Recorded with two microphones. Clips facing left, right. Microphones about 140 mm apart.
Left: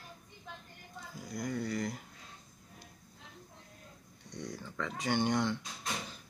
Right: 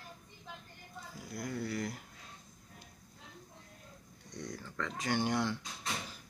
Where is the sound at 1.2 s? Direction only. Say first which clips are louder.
Left 2 dB; centre (ahead or behind).